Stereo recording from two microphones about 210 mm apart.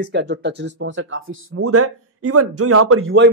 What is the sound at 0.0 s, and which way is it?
Speech, 50° right (ahead or behind).